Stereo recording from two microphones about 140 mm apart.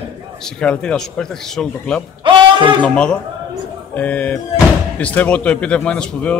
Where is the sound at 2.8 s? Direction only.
5° left (ahead or behind).